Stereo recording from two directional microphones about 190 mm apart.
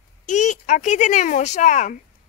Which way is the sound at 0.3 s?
40° left (ahead or behind).